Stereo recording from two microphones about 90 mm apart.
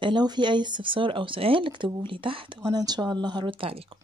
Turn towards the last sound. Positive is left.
turn(degrees=-80)